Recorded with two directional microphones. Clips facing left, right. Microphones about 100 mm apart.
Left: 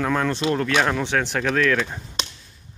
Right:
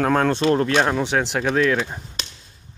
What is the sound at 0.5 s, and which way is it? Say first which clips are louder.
Speech: right 2 dB; 25° right (ahead or behind).